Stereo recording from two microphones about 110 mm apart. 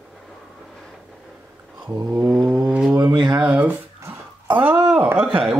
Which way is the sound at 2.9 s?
45° right (ahead or behind).